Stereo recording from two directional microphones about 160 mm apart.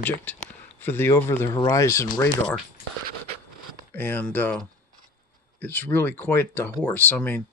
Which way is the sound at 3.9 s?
10° left (ahead or behind).